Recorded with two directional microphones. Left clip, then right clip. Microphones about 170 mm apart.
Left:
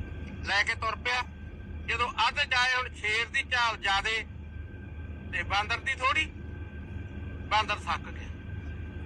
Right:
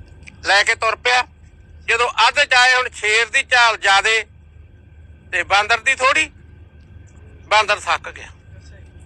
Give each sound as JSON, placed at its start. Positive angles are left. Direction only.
{"t": 0.2, "sound": "a man's voice", "side_deg": -60}
{"t": 5.3, "sound": "a man's voice", "side_deg": -55}
{"t": 7.4, "sound": "a man's voice", "side_deg": -55}